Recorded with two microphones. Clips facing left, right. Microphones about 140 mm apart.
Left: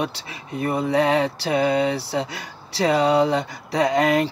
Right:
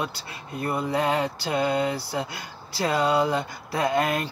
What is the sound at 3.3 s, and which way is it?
Speech, 90° left.